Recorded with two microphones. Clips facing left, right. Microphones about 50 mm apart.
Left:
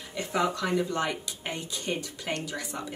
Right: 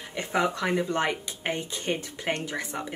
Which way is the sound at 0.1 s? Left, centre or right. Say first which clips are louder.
Right 1 dB; right.